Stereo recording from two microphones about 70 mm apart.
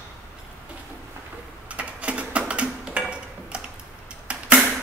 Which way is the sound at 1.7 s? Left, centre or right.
Centre.